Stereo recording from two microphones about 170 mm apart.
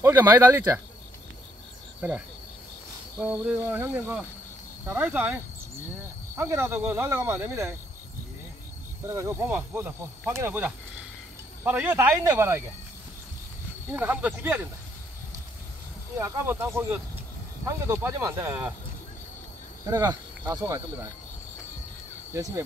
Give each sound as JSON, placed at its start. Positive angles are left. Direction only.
{"t": 0.0, "sound": "speech", "side_deg": -10}
{"t": 2.0, "sound": "cricket", "side_deg": -10}
{"t": 3.2, "sound": "speech", "side_deg": -10}
{"t": 6.3, "sound": "speech", "side_deg": -15}
{"t": 9.1, "sound": "speech", "side_deg": -15}
{"t": 13.8, "sound": "speech", "side_deg": -10}
{"t": 16.2, "sound": "speech", "side_deg": -15}
{"t": 19.9, "sound": "speech", "side_deg": -20}
{"t": 22.3, "sound": "speech", "side_deg": -15}